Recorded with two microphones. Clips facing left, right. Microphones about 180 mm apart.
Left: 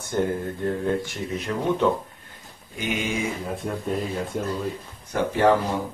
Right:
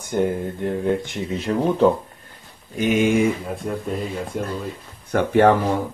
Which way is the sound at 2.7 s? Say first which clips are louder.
Right 9 dB; 45° right (ahead or behind).